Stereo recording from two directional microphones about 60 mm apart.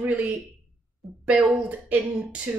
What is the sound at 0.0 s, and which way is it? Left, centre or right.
Speech, right.